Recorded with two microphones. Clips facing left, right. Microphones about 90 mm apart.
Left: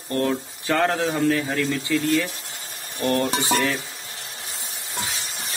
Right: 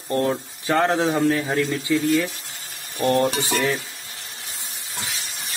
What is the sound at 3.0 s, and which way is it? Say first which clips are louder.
Speech: right 3 dB; 25° right (ahead or behind).